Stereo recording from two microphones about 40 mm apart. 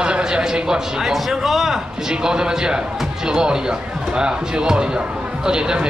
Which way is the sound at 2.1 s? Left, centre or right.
Centre.